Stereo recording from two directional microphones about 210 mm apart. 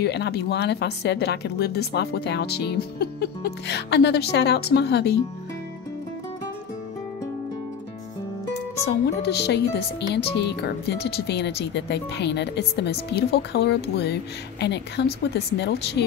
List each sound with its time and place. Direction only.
0.0 s a woman's voice: 50° left (ahead or behind)
8.8 s a woman's voice: 50° left (ahead or behind)